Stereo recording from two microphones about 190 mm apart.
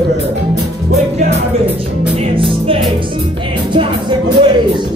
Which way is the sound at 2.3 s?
30° right (ahead or behind).